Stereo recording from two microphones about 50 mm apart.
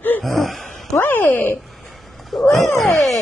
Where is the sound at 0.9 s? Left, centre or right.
Left.